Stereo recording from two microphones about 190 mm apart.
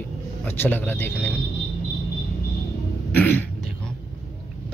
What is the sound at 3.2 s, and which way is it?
Speech, 10° left (ahead or behind).